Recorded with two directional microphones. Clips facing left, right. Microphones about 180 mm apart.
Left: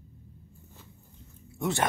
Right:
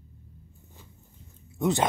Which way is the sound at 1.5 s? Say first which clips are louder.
Right 5 dB; 20° right (ahead or behind).